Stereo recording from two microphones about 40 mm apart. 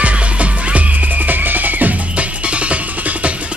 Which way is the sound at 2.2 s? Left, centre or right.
Right.